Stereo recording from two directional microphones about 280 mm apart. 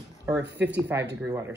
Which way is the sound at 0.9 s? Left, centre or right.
Centre.